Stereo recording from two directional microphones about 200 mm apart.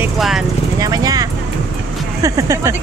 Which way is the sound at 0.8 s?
20° right (ahead or behind).